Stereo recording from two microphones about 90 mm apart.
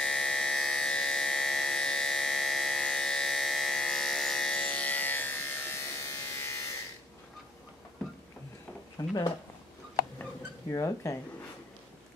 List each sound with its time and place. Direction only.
0.0 s a sound: 5° left (ahead or behind); by 6.7 s 35° left (ahead or behind)
9.0 s speech: 40° left (ahead or behind)
10.7 s speech: 35° left (ahead or behind)